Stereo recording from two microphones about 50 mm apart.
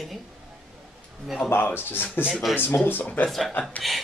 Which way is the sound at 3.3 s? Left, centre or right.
Centre.